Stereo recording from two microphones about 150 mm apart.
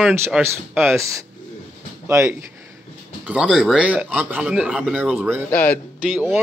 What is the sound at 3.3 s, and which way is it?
A man's voice, 5° right (ahead or behind).